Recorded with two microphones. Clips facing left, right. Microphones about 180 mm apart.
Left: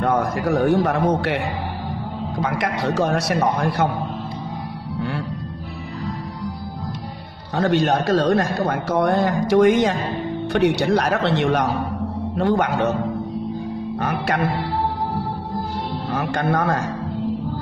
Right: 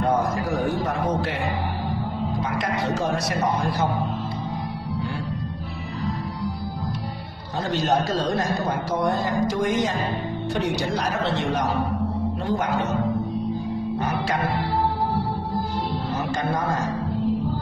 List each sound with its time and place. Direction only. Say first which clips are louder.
0.0 s speech: left 2 dB; 60° left (ahead or behind)
2.4 s speech: left 6 dB; 65° left (ahead or behind)
7.5 s a man's voice: left 4 dB; 60° left (ahead or behind)
13.9 s music: left 4 dB; 60° left (ahead or behind)
16.1 s a man's voice: left 7 dB; 60° left (ahead or behind)